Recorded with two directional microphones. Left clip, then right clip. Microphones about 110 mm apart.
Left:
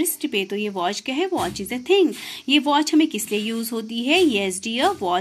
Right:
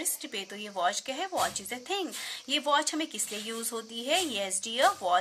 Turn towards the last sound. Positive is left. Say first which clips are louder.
# left 5 dB
turn(degrees=15)  # may be behind; listen again after turning